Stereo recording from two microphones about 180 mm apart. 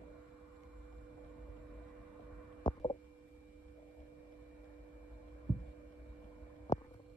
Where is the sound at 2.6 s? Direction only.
25° left (ahead or behind).